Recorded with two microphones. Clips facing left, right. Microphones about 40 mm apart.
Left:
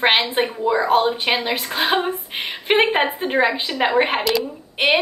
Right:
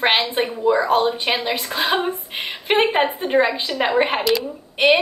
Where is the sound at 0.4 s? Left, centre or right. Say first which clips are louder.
Right 1 dB; centre.